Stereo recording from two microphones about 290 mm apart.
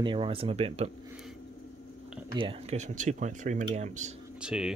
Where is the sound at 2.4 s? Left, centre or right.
Right.